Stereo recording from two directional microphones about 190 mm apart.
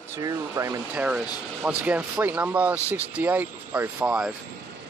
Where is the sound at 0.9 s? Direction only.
5° right (ahead or behind).